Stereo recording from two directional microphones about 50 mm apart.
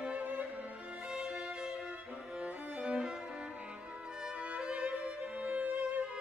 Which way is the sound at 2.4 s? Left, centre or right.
Right.